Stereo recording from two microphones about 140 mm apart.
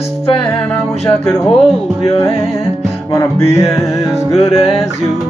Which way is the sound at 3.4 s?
50° left (ahead or behind).